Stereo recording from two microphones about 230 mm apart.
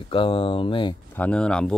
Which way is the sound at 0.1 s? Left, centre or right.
Left.